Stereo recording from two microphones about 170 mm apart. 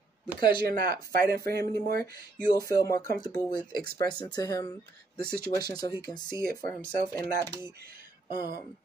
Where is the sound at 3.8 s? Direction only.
65° right (ahead or behind).